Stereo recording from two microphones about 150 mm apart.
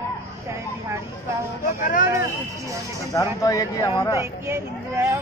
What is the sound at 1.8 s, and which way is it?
Speech, 65° left (ahead or behind).